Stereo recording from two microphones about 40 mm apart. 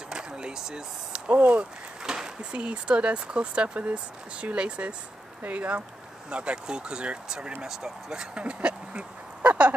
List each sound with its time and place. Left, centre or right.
0.1 s a sound: centre
1.3 s speech: right
2.0 s a sound: centre
2.5 s speech: right
6.3 s speech: right
7.6 s speech: centre
8.5 s speech: right